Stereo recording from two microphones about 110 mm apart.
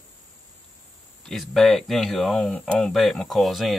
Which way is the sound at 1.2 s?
Centre (ahead or behind).